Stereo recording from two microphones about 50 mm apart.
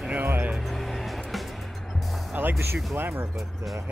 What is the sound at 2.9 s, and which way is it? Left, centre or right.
Speech, right.